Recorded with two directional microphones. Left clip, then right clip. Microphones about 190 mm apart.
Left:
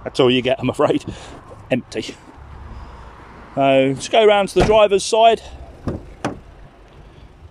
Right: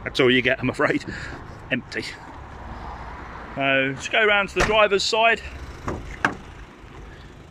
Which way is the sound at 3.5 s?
25° left (ahead or behind).